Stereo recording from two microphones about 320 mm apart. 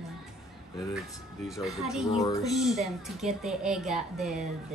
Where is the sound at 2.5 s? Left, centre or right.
Centre.